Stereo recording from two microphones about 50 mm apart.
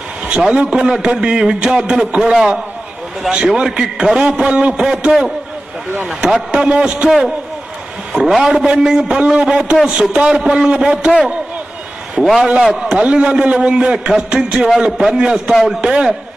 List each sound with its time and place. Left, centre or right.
0.2 s a man's voice: centre
4.7 s a man's voice: centre
7.1 s a man's voice: centre
8.4 s a man's voice: centre
12.2 s a man's voice: centre
12.9 s a man's voice: centre
14.9 s a man's voice: centre
15.1 s a man's voice: centre